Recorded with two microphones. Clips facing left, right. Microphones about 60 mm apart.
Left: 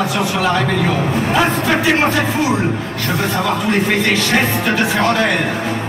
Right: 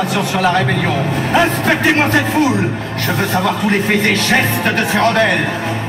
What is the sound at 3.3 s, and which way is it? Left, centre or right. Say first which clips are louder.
A man's voice: right 2 dB; right.